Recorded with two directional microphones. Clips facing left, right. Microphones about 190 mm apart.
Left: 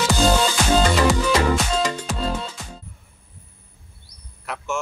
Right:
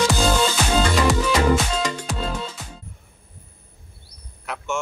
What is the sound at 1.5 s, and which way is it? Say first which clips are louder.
Music: even; centre (ahead or behind).